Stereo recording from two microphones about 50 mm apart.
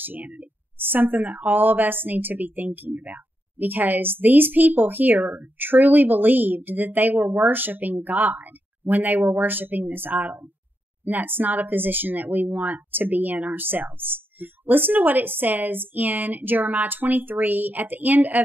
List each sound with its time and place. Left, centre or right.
0.0 s a woman's voice: right